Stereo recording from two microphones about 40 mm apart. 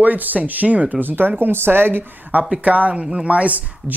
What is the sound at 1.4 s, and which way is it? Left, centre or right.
Speech, right.